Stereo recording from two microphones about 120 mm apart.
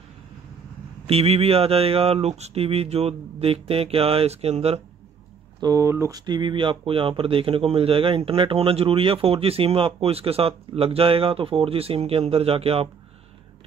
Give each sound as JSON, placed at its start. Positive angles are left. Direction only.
{"t": 1.0, "sound": "speech", "side_deg": -55}
{"t": 5.6, "sound": "speech", "side_deg": -30}
{"t": 6.2, "sound": "speech", "side_deg": -40}